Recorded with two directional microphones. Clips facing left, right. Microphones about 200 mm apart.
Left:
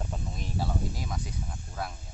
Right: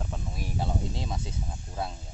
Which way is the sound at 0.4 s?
15° right (ahead or behind).